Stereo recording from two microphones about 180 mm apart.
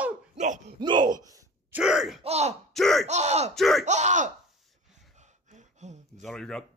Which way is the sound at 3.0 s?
40° right (ahead or behind).